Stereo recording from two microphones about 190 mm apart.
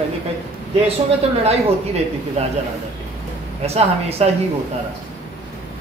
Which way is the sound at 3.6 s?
35° right (ahead or behind).